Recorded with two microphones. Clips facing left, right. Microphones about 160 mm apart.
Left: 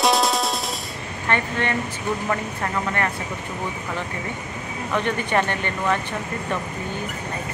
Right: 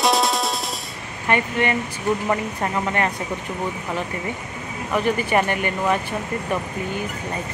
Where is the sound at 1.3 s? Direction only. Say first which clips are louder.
Right 3 dB; 15° right (ahead or behind).